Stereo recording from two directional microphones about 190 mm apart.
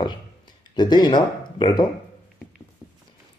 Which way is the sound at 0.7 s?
20° left (ahead or behind).